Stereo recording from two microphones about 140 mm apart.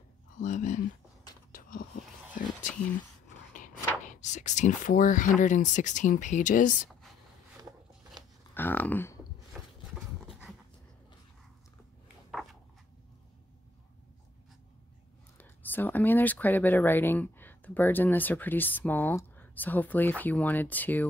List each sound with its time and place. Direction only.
0.4 s speech: 65° left (ahead or behind)
1.5 s whispering: 85° left; by 2.7 s 70° left (ahead or behind)
3.5 s speech: 65° left (ahead or behind)
8.5 s speech: 10° left (ahead or behind)
9.5 s horse: 5° right (ahead or behind)
15.3 s speech: 15° left (ahead or behind)